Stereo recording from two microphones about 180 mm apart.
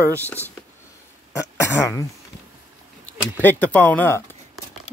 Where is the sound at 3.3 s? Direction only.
10° left (ahead or behind).